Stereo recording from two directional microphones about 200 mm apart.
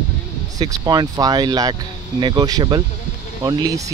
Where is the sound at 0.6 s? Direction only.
20° right (ahead or behind).